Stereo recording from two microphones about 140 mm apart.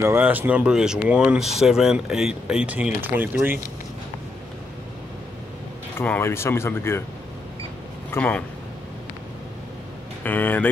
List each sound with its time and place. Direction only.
0.0 s speech: 15° right (ahead or behind)
5.9 s speech: 15° left (ahead or behind)
8.1 s a man's voice: 10° left (ahead or behind)
10.2 s speech: 15° left (ahead or behind)